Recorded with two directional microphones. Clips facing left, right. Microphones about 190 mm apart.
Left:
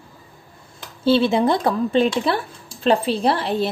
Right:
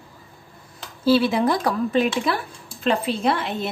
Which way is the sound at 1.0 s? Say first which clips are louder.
Left 1 dB; 25° left (ahead or behind).